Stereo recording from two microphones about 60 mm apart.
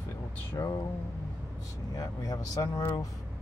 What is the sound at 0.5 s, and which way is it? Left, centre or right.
Speech, left.